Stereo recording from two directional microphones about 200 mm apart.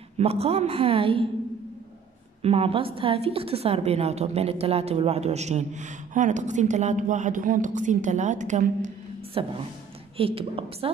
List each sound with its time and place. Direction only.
0.2 s a woman's voice: 30° right (ahead or behind)
2.4 s a woman's voice: 30° right (ahead or behind)